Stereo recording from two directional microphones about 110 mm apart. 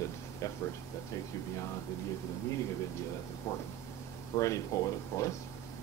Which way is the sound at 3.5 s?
25° left (ahead or behind).